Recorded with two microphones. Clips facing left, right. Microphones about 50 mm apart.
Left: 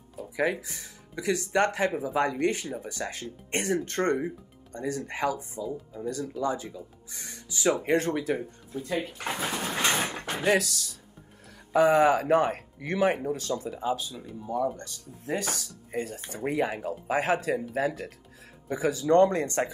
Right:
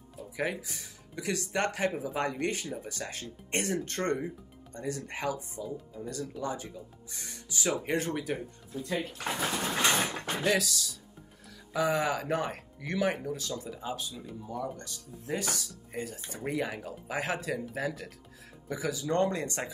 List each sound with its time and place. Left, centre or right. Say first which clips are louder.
0.4 s speech: left 5 dB; left
8.4 s speech: left 3 dB; left
9.8 s a sound: left 1 dB; left
10.6 s speech: even; left
14.4 s speech: left 8 dB; left
16.4 s speech: left 5 dB; left